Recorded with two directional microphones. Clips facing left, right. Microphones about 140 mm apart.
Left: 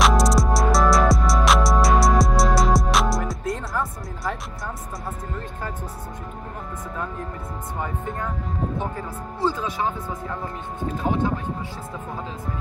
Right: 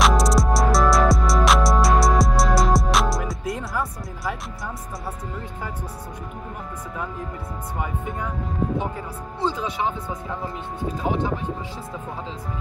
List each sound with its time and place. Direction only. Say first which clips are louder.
0.0 s music: even; centre (ahead or behind)
7.8 s speech: left 1 dB; centre (ahead or behind)
8.7 s speech: right 1 dB; 15° right (ahead or behind)